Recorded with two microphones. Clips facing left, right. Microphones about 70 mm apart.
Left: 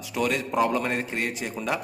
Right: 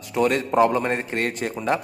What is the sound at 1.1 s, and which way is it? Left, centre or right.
Speech, right.